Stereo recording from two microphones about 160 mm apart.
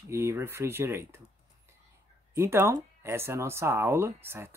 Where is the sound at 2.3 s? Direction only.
15° right (ahead or behind).